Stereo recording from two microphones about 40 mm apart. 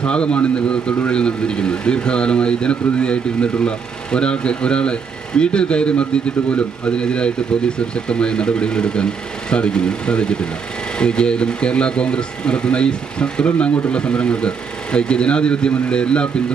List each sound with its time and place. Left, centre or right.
0.0 s speech: left